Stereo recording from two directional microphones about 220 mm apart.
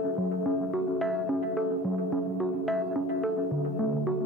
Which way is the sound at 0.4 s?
Centre (ahead or behind).